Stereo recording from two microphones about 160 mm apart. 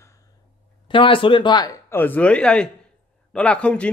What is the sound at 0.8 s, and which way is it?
Speech, 30° left (ahead or behind).